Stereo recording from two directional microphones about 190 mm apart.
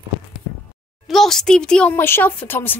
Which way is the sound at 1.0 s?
Centre (ahead or behind).